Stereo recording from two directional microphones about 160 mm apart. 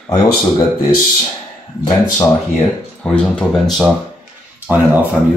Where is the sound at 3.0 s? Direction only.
5° left (ahead or behind).